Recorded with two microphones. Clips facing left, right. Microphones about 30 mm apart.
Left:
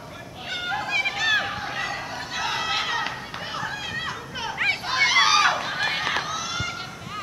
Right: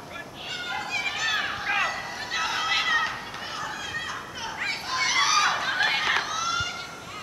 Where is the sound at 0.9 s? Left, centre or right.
Left.